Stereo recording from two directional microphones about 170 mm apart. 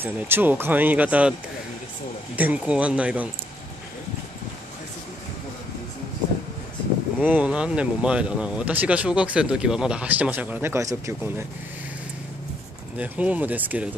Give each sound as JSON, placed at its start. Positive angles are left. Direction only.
{"t": 0.0, "sound": "speech", "side_deg": -10}
{"t": 2.3, "sound": "speech", "side_deg": -10}
{"t": 7.2, "sound": "speech", "side_deg": -10}
{"t": 12.9, "sound": "speech", "side_deg": -10}